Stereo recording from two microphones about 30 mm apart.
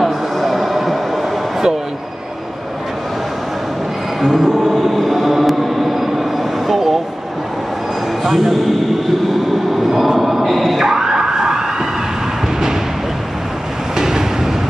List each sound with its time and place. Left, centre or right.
0.0 s a sound: centre
4.2 s choir: centre
8.2 s train: centre
10.8 s emergency vehicle: centre
13.9 s train: centre